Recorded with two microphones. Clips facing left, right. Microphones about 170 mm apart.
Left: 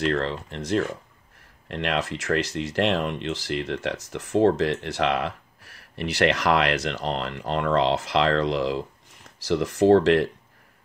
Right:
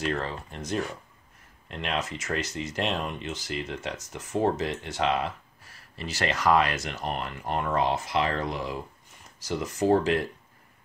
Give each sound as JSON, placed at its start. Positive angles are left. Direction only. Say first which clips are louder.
{"t": 0.0, "sound": "speech", "louder": "left 5 dB", "side_deg": 75}